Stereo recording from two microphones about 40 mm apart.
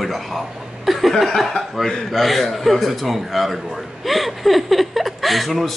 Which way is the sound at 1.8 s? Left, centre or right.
Centre.